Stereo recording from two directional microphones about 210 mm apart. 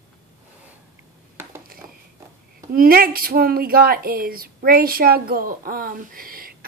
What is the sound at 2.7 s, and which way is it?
Speech, 45° right (ahead or behind).